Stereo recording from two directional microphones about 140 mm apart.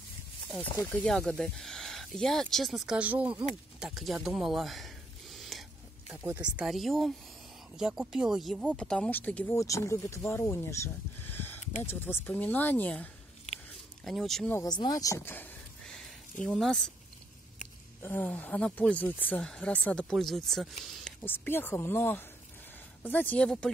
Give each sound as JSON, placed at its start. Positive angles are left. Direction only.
{"t": 1.0, "sound": "speech", "side_deg": 5}
{"t": 3.8, "sound": "a sound", "side_deg": -5}
{"t": 6.2, "sound": "speech", "side_deg": -10}
{"t": 9.6, "sound": "speech", "side_deg": 20}
{"t": 14.0, "sound": "speech", "side_deg": 0}
{"t": 14.5, "sound": "speech", "side_deg": 25}
{"t": 16.4, "sound": "speech", "side_deg": 0}
{"t": 18.0, "sound": "speech", "side_deg": 15}
{"t": 21.2, "sound": "speech", "side_deg": 15}